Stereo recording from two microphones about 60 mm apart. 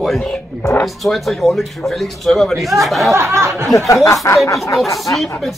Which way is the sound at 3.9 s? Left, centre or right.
Left.